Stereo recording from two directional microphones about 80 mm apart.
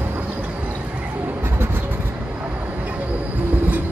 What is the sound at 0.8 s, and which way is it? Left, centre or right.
Vehicle, centre.